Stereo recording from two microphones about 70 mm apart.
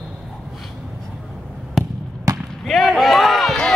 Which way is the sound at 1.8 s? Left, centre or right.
Centre.